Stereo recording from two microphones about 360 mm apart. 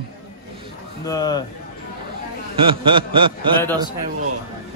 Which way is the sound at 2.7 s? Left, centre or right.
Centre.